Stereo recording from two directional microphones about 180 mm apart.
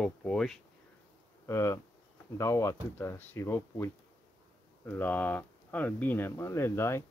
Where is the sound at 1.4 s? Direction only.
15° left (ahead or behind).